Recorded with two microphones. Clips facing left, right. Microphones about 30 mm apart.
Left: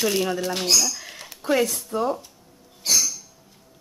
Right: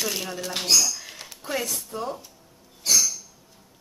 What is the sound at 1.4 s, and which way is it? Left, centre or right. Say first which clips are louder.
Speech: left 8 dB; centre.